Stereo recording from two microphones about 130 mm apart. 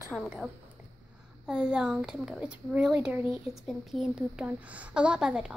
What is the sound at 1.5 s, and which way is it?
A child's voice, 5° right (ahead or behind).